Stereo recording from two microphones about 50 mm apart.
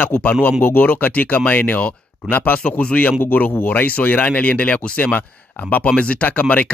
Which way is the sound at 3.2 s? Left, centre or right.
Left.